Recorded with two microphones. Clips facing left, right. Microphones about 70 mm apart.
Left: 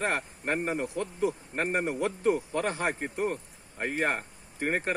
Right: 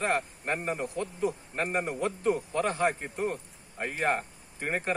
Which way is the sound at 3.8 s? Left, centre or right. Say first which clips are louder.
Left 3 dB; left.